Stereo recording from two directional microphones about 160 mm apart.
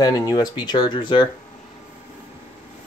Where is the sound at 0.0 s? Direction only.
25° left (ahead or behind).